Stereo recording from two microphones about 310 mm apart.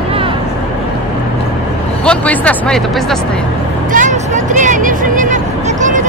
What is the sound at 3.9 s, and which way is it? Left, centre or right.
Music, right.